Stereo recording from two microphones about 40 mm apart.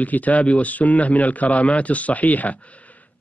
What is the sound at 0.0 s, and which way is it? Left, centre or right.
Speech, left.